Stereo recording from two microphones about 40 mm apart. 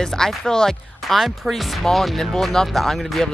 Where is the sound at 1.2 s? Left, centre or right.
Centre.